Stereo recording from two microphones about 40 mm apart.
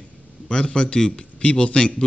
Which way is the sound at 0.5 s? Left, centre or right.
Left.